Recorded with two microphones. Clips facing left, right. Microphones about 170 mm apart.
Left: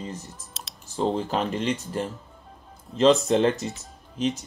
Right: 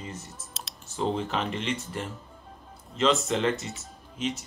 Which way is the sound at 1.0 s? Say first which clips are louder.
Left 3 dB; 35° left (ahead or behind).